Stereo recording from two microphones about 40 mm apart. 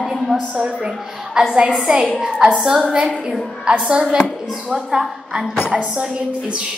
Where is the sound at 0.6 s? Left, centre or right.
Right.